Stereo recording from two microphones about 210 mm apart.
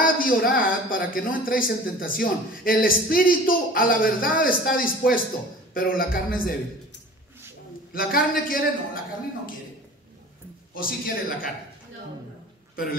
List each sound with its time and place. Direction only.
0.0 s speech: 45° left (ahead or behind)
7.9 s speech: 45° left (ahead or behind)
10.7 s speech: 45° left (ahead or behind)